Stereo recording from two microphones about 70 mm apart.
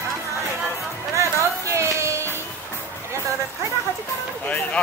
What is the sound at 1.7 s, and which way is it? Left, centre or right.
Music, right.